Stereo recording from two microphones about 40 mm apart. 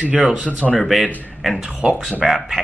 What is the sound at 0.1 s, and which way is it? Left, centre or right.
Speech, centre.